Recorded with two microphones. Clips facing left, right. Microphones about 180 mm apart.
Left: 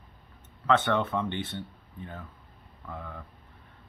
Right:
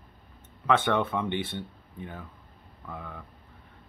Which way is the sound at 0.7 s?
10° right (ahead or behind).